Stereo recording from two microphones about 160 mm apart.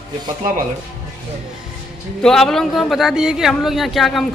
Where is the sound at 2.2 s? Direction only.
5° left (ahead or behind).